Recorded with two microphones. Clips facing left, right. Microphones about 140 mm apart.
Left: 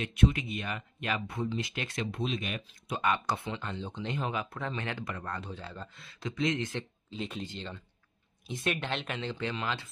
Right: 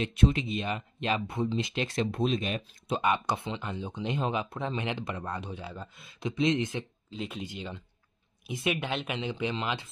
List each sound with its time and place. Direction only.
0.0 s speech: 30° right (ahead or behind)
2.0 s speech: 40° right (ahead or behind)
3.0 s speech: 20° right (ahead or behind)
7.1 s speech: centre (ahead or behind)
7.4 s speech: 10° right (ahead or behind)